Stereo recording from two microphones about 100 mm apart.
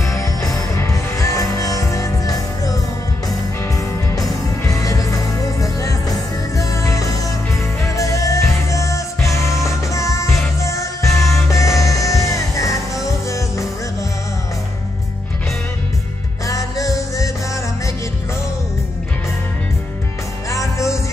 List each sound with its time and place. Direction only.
0.0 s music: 30° left (ahead or behind)
4.1 s music: 35° left (ahead or behind)
16.4 s music: 35° left (ahead or behind)
20.4 s music: 30° left (ahead or behind)